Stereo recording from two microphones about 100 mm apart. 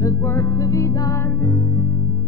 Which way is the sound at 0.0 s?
30° left (ahead or behind).